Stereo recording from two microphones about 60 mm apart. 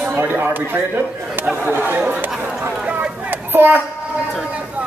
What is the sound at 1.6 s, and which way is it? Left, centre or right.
Speech, right.